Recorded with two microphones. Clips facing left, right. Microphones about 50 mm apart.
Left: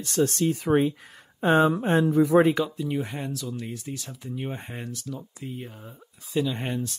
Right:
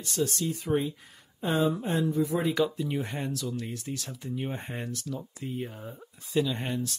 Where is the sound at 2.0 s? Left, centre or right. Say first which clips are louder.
Left 10 dB; left.